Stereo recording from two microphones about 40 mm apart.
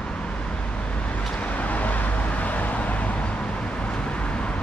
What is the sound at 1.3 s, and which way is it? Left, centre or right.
Vehicle, left.